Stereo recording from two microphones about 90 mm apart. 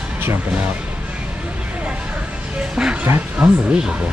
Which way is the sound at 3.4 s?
10° right (ahead or behind).